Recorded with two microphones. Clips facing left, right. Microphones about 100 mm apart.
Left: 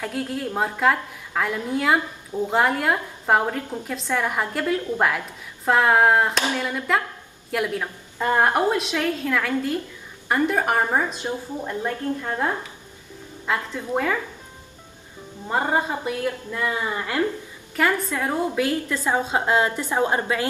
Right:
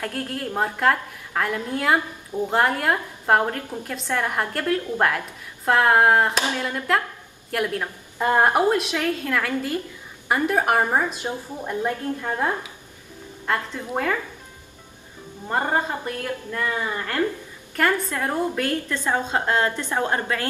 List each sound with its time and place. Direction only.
0.0 s a woman's voice: 5° left (ahead or behind)
8.2 s a woman's voice: 10° right (ahead or behind)
8.6 s a woman's voice: centre (ahead or behind)
13.5 s a woman's voice: centre (ahead or behind)
15.4 s a woman's voice: 5° left (ahead or behind)